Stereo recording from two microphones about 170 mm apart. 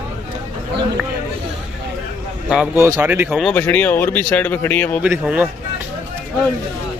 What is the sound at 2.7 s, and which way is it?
Speech, 15° right (ahead or behind).